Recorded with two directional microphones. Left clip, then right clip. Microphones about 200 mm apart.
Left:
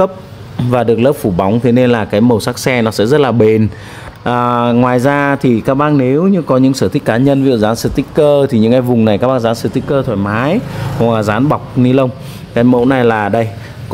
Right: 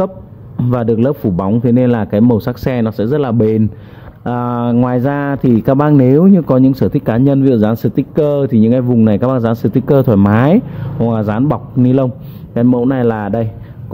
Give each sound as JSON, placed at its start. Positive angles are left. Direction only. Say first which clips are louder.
{"t": 0.7, "sound": "speech", "louder": "left 4 dB", "side_deg": 0}
{"t": 11.0, "sound": "speech", "louder": "left 4 dB", "side_deg": 5}